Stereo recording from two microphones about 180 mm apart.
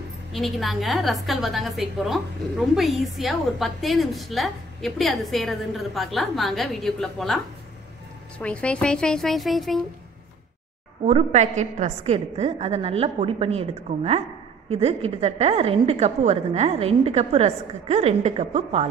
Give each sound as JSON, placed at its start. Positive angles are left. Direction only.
{"t": 0.3, "sound": "a woman's voice", "side_deg": 0}
{"t": 8.4, "sound": "a woman's voice", "side_deg": 5}
{"t": 11.1, "sound": "a woman's voice", "side_deg": -35}